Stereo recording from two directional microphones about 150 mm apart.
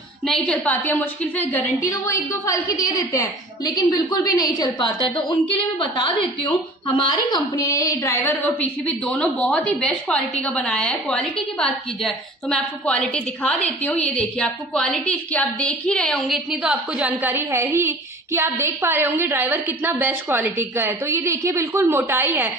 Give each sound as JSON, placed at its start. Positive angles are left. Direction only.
{"t": 0.3, "sound": "a woman's voice", "side_deg": 5}
{"t": 16.6, "sound": "a woman's voice", "side_deg": -10}